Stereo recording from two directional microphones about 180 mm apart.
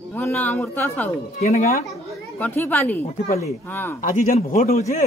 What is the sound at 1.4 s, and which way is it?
Speech, 45° left (ahead or behind).